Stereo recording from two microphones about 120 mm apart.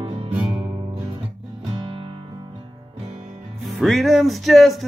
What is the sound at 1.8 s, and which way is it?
Music, 45° right (ahead or behind).